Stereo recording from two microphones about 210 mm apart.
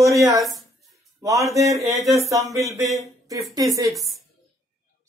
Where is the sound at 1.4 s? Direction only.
15° right (ahead or behind).